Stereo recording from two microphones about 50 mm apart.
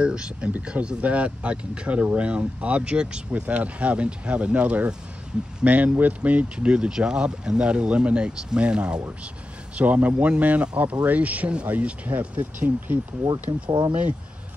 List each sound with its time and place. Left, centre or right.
0.0 s speech: centre
5.7 s speech: right; by 9.0 s centre
9.8 s speech: right